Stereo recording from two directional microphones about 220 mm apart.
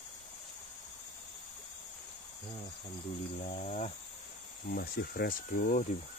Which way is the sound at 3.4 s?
30° left (ahead or behind).